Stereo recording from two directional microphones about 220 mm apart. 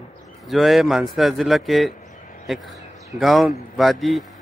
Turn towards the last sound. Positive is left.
turn(degrees=0)  # may be behind; listen again after turning